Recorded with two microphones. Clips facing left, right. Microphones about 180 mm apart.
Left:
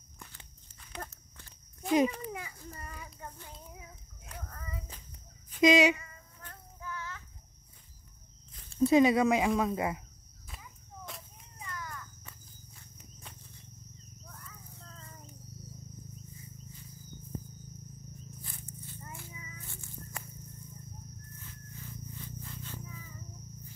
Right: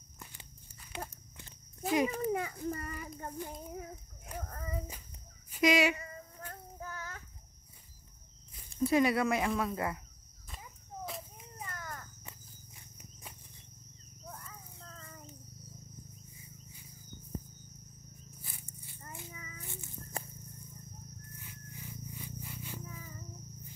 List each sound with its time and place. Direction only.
0.2 s biting: 10° right (ahead or behind)
2.1 s a child's voice: 50° right (ahead or behind)
2.7 s child singing: 50° right (ahead or behind)
3.4 s a sound: 50° right (ahead or behind)
5.6 s speech: 20° left (ahead or behind)
6.5 s child singing: 40° right (ahead or behind)
8.7 s speech: 20° left (ahead or behind)
11.5 s cricket: 50° right (ahead or behind)
12.3 s walk: 15° right (ahead or behind)
18.4 s a sound: 10° right (ahead or behind)
21.4 s music: 15° right (ahead or behind)